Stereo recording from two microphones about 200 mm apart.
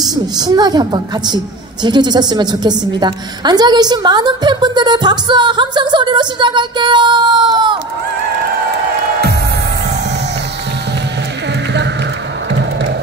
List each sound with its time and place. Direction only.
0.0 s a woman's voice: 20° right (ahead or behind)